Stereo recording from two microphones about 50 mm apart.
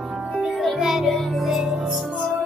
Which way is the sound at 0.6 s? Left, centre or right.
Centre.